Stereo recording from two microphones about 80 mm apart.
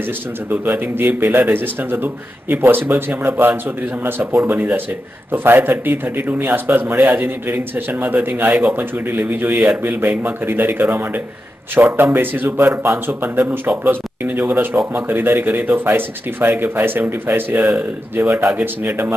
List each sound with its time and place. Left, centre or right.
0.5 s a man's voice: right